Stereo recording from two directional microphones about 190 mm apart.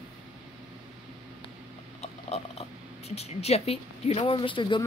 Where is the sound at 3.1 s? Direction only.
35° left (ahead or behind).